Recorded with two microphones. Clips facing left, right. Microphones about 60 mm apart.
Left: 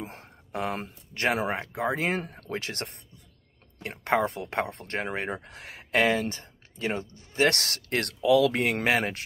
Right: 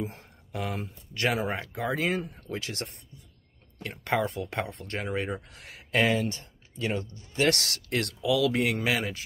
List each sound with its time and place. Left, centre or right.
0.0 s a sound: left
1.3 s speech: left
1.7 s speech: left
2.2 s speech: left
2.5 s speech: left
4.0 s speech: left